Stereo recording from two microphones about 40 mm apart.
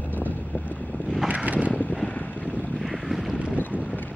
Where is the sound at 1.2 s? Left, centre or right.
Right.